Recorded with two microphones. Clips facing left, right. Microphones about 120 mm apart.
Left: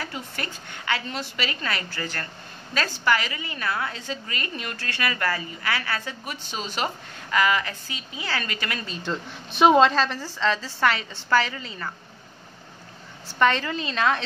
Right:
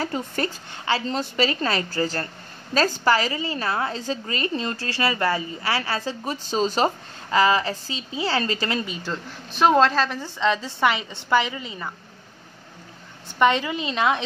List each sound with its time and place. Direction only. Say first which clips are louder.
0.0 s a woman's voice: right 7 dB; 35° right (ahead or behind)
8.8 s a woman's voice: even; 5° right (ahead or behind)
10.2 s a woman's voice: right 2 dB; 20° right (ahead or behind)
13.4 s a woman's voice: right 2 dB; 15° right (ahead or behind)